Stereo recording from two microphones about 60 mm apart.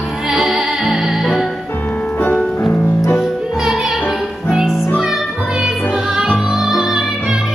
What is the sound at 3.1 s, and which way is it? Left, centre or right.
Music, centre.